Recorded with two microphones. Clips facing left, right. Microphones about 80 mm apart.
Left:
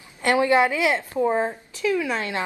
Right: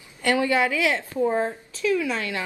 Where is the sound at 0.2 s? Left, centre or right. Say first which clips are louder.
Left 3 dB; left.